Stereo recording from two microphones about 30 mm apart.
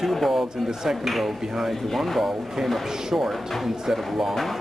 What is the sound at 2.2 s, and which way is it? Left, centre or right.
Speech, centre.